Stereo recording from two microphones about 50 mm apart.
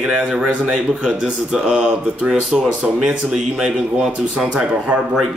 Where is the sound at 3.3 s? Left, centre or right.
Centre.